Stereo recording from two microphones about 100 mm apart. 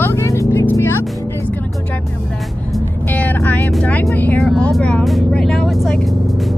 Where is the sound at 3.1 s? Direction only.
15° left (ahead or behind).